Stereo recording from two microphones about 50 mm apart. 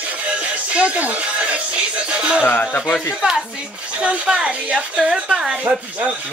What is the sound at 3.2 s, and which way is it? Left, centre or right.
Speech, centre.